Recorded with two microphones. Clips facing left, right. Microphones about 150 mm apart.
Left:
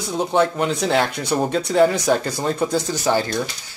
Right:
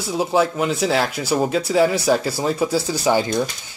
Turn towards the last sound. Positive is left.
turn(degrees=-15)  # may be behind; listen again after turning